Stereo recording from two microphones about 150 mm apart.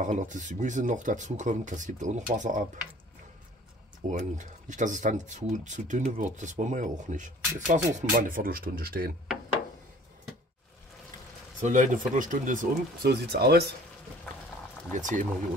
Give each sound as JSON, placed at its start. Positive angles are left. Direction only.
{"t": 0.0, "sound": "speech", "side_deg": -55}
{"t": 4.1, "sound": "speech", "side_deg": -55}
{"t": 8.2, "sound": "speech", "side_deg": -80}
{"t": 11.6, "sound": "speech", "side_deg": -55}
{"t": 14.9, "sound": "speech", "side_deg": -55}